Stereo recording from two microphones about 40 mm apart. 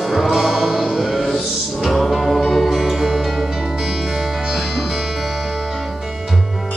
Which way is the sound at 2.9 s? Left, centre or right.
Centre.